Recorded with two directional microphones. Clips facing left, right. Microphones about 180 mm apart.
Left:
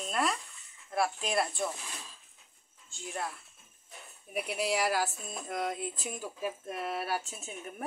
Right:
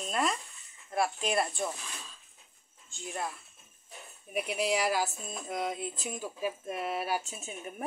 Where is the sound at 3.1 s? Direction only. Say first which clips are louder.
Right 1 dB; 5° right (ahead or behind).